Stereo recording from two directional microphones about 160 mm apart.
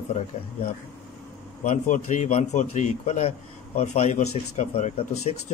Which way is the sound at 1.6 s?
50° left (ahead or behind).